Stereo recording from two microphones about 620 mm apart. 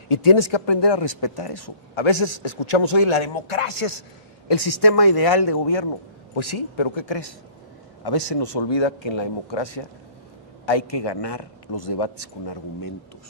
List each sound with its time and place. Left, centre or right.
0.1 s speech: left
4.5 s a man's voice: left